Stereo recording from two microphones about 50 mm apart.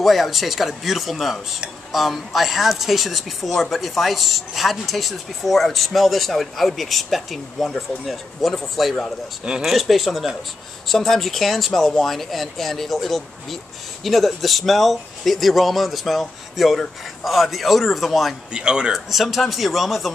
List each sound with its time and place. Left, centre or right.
0.0 s speech: centre
18.5 s speech: centre
19.0 s speech: centre